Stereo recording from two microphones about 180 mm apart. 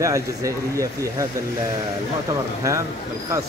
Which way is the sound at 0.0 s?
15° right (ahead or behind).